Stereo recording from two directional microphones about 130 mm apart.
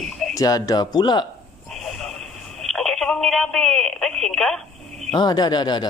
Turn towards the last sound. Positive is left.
turn(degrees=35)  # may be behind; listen again after turning